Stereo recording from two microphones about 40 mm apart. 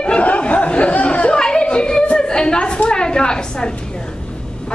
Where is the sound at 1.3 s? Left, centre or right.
Centre.